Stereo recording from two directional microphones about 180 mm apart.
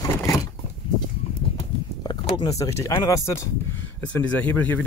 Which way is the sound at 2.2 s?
25° left (ahead or behind).